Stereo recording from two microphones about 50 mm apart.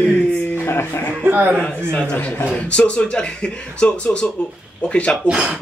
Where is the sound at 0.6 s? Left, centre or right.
Left.